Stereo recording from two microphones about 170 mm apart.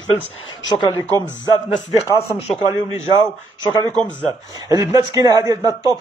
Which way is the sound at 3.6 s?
25° left (ahead or behind).